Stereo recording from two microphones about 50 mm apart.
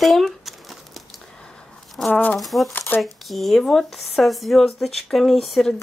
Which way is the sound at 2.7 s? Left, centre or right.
Left.